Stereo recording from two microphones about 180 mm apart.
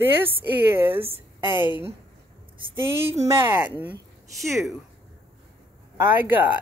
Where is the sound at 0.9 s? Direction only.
30° right (ahead or behind).